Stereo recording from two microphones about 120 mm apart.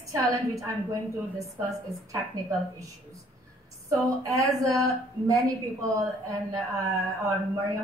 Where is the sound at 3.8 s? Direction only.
25° right (ahead or behind).